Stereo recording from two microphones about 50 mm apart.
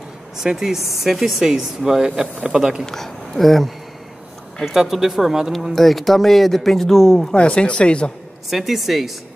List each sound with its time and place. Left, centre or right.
0.4 s speech: centre
2.8 s speech: centre
7.3 s speech: left
8.5 s speech: centre